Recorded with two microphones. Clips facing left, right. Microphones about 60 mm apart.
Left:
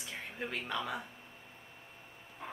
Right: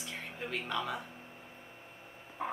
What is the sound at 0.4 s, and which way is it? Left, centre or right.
Speech, centre.